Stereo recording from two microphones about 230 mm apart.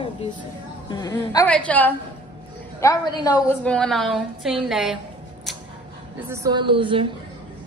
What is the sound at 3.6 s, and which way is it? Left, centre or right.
A woman's voice, centre.